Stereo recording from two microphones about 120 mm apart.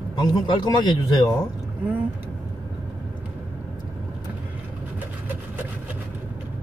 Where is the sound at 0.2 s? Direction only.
35° left (ahead or behind).